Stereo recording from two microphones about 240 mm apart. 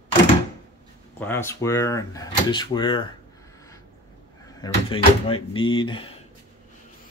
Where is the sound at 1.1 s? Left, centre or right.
Centre.